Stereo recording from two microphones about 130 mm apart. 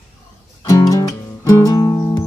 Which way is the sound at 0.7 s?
25° left (ahead or behind).